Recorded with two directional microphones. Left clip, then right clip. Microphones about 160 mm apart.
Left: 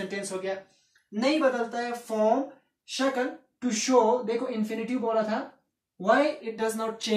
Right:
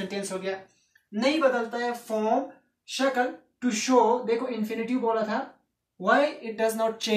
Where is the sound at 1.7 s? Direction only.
10° right (ahead or behind).